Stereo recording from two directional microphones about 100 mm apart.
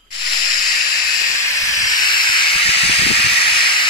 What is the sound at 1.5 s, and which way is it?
Hiss, 35° left (ahead or behind).